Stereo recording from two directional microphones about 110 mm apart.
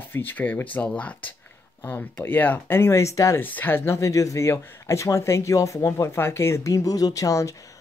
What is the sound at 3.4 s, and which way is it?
Speech, 15° left (ahead or behind).